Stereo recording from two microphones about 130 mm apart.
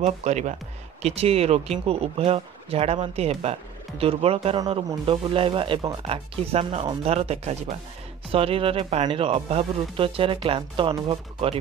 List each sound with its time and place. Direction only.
0.0 s speech: 65° right (ahead or behind)
1.0 s speech: 50° right (ahead or behind)
7.1 s speech: 55° right (ahead or behind)